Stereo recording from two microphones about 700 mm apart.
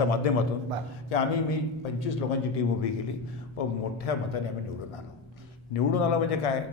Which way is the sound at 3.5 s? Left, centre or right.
Left.